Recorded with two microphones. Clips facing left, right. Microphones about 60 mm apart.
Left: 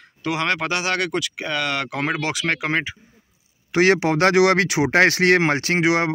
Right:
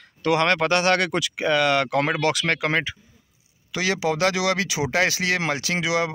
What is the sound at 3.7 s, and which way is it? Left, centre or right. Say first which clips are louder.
Speech: left 7 dB; left.